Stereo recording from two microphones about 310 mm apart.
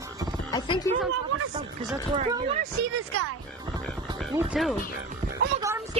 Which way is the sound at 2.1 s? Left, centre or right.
Centre.